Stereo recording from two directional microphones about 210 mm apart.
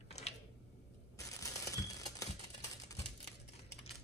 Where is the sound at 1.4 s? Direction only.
15° left (ahead or behind).